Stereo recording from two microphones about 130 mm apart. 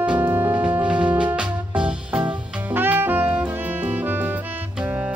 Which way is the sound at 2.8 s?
15° right (ahead or behind).